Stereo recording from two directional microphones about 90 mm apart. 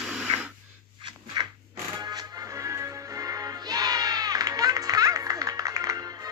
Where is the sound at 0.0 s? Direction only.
15° right (ahead or behind).